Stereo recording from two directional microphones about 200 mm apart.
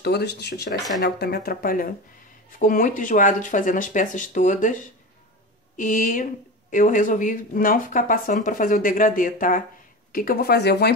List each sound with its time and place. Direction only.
0.0 s speech: 55° left (ahead or behind); by 4.7 s 40° left (ahead or behind)
5.8 s speech: 40° left (ahead or behind)